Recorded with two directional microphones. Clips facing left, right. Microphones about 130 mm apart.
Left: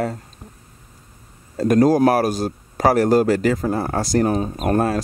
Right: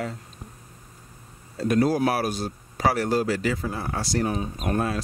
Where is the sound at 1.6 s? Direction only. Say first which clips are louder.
Left 7 dB; 45° left (ahead or behind).